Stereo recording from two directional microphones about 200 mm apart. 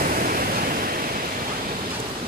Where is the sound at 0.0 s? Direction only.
45° right (ahead or behind).